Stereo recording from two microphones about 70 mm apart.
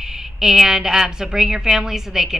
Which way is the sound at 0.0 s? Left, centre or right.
Centre.